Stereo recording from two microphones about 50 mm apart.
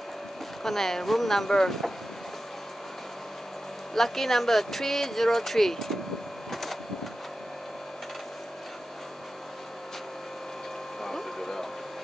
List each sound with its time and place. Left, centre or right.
0.7 s speech: centre
3.9 s speech: centre
6.5 s printer: centre
11.0 s a sound: centre